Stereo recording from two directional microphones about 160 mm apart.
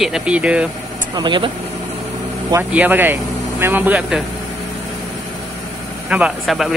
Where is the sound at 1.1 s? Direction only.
30° right (ahead or behind).